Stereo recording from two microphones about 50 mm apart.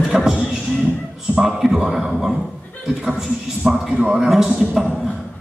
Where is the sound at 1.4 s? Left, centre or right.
Centre.